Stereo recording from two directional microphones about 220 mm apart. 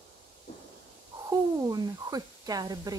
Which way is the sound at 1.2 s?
15° right (ahead or behind).